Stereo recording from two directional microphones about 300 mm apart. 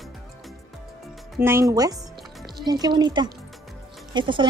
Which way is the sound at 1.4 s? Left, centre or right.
Centre.